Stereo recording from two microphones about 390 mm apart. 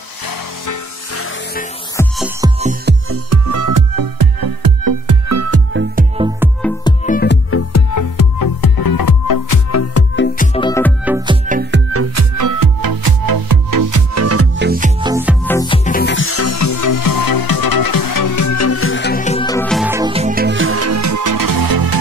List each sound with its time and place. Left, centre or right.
2.0 s music: centre
2.6 s music: right
3.3 s music: right
6.1 s music: centre
6.6 s music: centre
7.2 s music: left
7.7 s music: left
10.1 s music: left
11.1 s music: centre
11.4 s music: right
11.9 s music: right
14.7 s music: centre
15.4 s music: centre; by 21.9 s right